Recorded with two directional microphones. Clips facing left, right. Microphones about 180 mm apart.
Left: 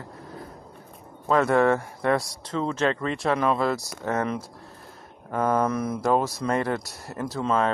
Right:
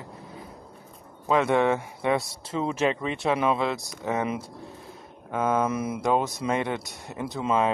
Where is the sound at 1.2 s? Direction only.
5° right (ahead or behind).